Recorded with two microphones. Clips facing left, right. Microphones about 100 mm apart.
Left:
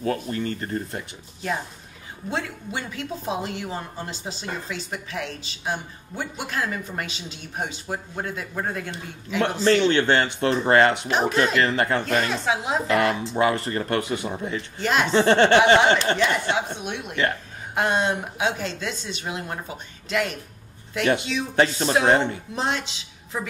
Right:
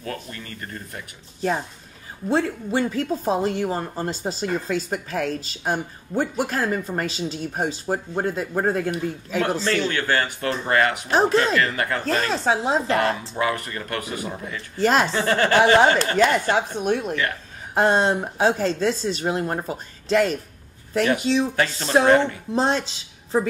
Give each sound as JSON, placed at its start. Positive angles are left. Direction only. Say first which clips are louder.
{"t": 0.0, "sound": "speech", "louder": "left 7 dB", "side_deg": 30}
{"t": 2.2, "sound": "speech", "louder": "right 7 dB", "side_deg": -35}
{"t": 9.6, "sound": "speech", "louder": "left 5 dB", "side_deg": 30}
{"t": 11.1, "sound": "speech", "louder": "right 3 dB", "side_deg": -35}
{"t": 11.5, "sound": "speech", "louder": "left 1 dB", "side_deg": 30}
{"t": 12.0, "sound": "speech", "louder": "right 1 dB", "side_deg": -35}
{"t": 13.4, "sound": "speech", "louder": "left 5 dB", "side_deg": 30}
{"t": 14.8, "sound": "speech", "louder": "right 4 dB", "side_deg": -40}
{"t": 15.0, "sound": "speech", "louder": "left 4 dB", "side_deg": 30}
{"t": 16.2, "sound": "speech", "louder": "right 4 dB", "side_deg": -45}
{"t": 21.5, "sound": "speech", "louder": "even", "side_deg": 25}
{"t": 22.5, "sound": "speech", "louder": "right 5 dB", "side_deg": -35}